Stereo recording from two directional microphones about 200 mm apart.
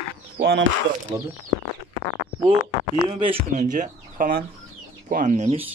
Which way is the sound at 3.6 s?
40° right (ahead or behind).